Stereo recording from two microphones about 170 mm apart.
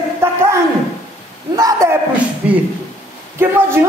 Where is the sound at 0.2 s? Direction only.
15° right (ahead or behind).